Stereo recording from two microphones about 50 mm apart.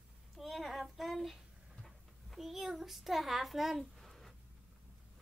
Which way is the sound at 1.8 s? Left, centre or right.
Centre.